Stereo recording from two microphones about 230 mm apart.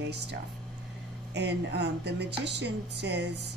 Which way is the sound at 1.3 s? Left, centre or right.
Right.